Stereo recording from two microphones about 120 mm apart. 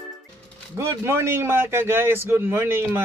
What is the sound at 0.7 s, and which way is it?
A man's voice, 20° right (ahead or behind).